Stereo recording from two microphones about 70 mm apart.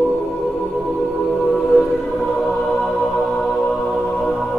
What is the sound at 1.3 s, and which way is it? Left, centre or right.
Music, centre.